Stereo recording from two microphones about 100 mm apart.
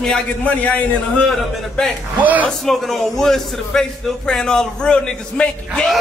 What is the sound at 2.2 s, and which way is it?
Speech, 15° right (ahead or behind).